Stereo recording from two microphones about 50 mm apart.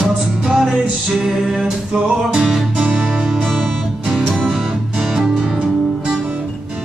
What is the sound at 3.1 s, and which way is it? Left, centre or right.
Music, centre.